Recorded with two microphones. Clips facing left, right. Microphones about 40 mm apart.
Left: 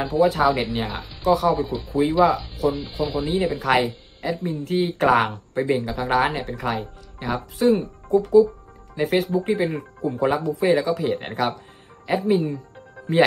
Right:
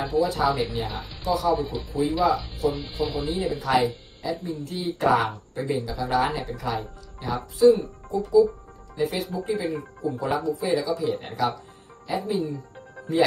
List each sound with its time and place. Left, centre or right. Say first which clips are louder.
0.0 s speech: left 4 dB; left
2.7 s speech: left 3 dB; centre
3.6 s speech: left 2 dB; left